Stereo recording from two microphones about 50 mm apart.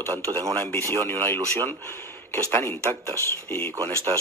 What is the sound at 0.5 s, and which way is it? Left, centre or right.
Speech, left.